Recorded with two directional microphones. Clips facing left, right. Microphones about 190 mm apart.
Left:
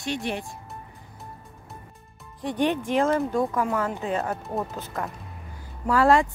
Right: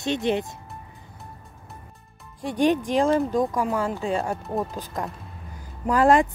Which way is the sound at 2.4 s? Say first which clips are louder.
Right 3 dB; 10° right (ahead or behind).